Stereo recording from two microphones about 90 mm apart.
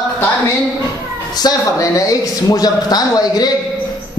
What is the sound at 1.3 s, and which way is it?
Speech, 50° left (ahead or behind).